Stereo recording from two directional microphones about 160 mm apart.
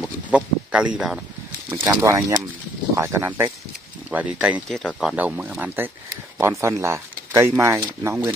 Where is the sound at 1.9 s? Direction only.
20° right (ahead or behind); by 5.1 s centre (ahead or behind).